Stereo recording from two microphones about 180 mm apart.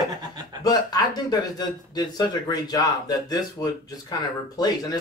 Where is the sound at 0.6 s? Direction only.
20° left (ahead or behind).